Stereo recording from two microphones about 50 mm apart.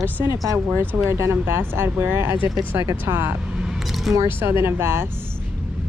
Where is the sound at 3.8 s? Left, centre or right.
Centre.